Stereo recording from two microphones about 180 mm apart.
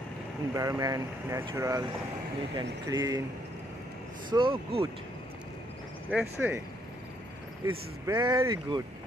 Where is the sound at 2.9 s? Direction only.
20° right (ahead or behind).